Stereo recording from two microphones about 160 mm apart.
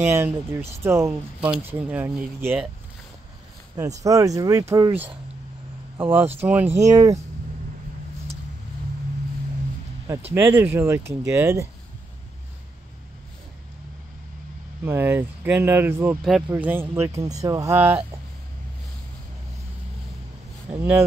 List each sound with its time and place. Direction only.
0.1 s speech: 15° right (ahead or behind)
3.7 s speech: 20° right (ahead or behind)
6.1 s speech: 10° right (ahead or behind)
10.3 s speech: 15° right (ahead or behind)
14.9 s speech: 15° right (ahead or behind)
20.7 s speech: 15° right (ahead or behind)